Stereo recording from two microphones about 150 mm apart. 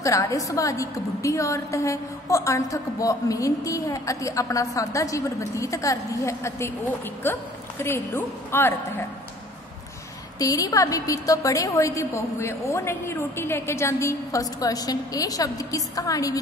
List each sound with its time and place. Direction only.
0.0 s a woman's voice: 20° left (ahead or behind)
10.4 s a woman's voice: 25° left (ahead or behind)